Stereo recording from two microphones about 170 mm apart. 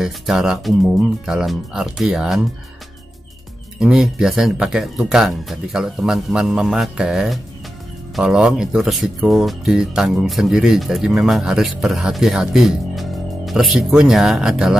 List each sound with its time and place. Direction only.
0.0 s speech: 5° right (ahead or behind)
3.8 s speech: 5° right (ahead or behind)